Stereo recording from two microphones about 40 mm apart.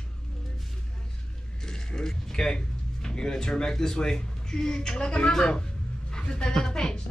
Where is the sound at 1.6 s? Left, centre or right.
Centre.